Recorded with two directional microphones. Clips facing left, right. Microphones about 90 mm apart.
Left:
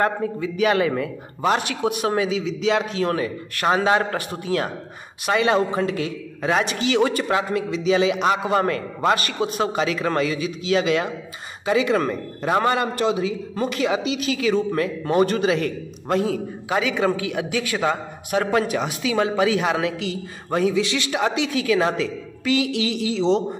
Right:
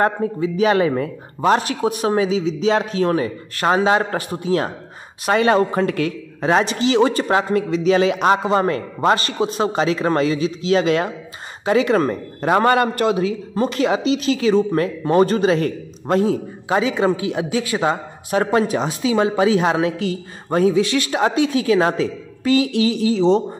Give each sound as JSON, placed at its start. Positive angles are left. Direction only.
{"t": 0.0, "sound": "a man's voice", "side_deg": -35}
{"t": 5.2, "sound": "a woman's voice", "side_deg": -45}
{"t": 6.6, "sound": "a man's voice", "side_deg": -25}
{"t": 8.5, "sound": "a man's voice", "side_deg": -30}
{"t": 12.6, "sound": "a man's voice", "side_deg": -55}
{"t": 13.6, "sound": "a man's voice", "side_deg": -40}